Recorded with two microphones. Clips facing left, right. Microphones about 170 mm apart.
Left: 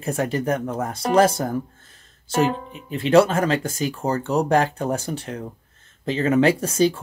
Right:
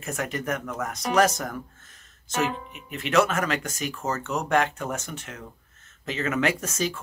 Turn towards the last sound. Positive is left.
turn(degrees=30)  # may be behind; listen again after turning